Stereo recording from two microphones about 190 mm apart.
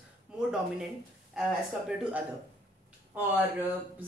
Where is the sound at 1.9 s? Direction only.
5° right (ahead or behind).